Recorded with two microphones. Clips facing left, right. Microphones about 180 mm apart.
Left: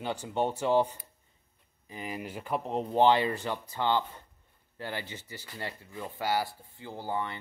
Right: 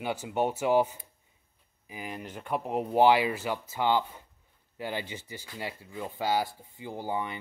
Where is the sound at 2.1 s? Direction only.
5° left (ahead or behind).